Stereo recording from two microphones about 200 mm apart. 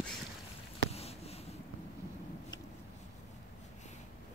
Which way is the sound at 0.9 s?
30° left (ahead or behind).